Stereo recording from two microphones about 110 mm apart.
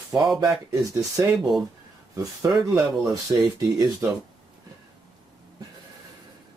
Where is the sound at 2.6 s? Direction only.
35° right (ahead or behind).